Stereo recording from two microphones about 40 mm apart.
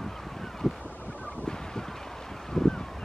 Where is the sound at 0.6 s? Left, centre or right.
Centre.